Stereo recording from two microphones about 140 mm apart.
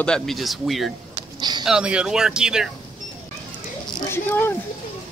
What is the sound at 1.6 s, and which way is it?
Speech, 5° right (ahead or behind).